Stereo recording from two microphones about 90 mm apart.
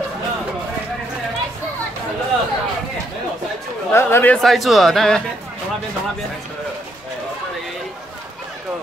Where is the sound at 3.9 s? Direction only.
25° left (ahead or behind).